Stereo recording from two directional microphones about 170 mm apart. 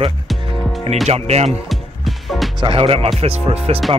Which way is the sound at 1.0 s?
40° right (ahead or behind).